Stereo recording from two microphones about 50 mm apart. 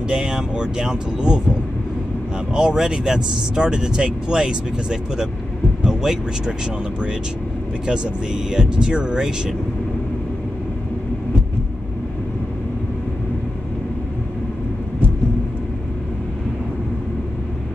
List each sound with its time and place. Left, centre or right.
0.1 s speech: centre
2.5 s speech: centre
7.8 s speech: centre